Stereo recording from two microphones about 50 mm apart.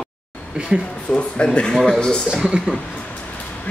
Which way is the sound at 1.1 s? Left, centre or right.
Centre.